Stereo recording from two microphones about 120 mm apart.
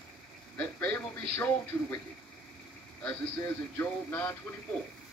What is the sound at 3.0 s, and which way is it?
Speech, 15° left (ahead or behind).